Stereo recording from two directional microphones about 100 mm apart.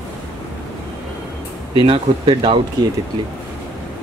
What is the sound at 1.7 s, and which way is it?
Speech, 65° right (ahead or behind).